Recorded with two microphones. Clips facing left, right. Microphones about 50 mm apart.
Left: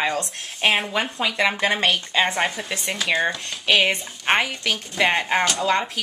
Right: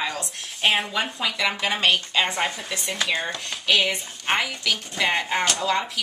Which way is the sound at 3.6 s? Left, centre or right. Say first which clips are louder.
Left 3 dB; left.